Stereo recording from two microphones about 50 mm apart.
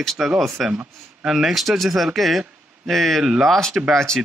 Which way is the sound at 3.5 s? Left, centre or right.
Centre.